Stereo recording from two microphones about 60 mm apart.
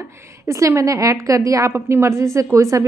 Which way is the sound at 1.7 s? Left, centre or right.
Right.